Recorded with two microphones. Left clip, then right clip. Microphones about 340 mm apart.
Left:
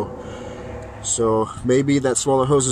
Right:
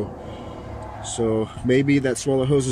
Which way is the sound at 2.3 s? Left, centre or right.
Left.